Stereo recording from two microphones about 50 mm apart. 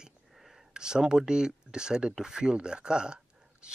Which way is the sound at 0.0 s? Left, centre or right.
Centre.